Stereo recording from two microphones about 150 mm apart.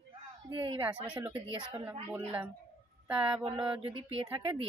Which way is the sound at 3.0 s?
5° right (ahead or behind).